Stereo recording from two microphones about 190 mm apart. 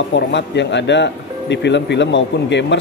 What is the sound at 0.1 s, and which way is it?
Speech, 70° left (ahead or behind).